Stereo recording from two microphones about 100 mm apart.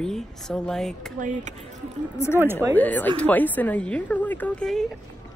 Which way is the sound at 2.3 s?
20° right (ahead or behind).